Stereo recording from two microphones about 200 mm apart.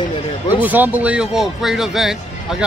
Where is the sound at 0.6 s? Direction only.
10° right (ahead or behind).